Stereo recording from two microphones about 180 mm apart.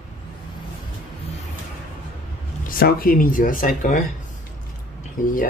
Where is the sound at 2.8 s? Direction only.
55° left (ahead or behind).